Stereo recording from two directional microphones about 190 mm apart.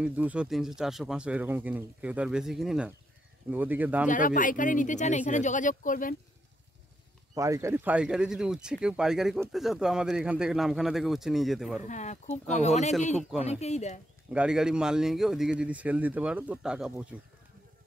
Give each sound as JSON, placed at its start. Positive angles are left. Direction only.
{"t": 0.0, "sound": "speech", "side_deg": -5}
{"t": 4.1, "sound": "speech", "side_deg": 45}
{"t": 7.3, "sound": "speech", "side_deg": -15}
{"t": 11.9, "sound": "speech", "side_deg": 35}
{"t": 14.3, "sound": "speech", "side_deg": -5}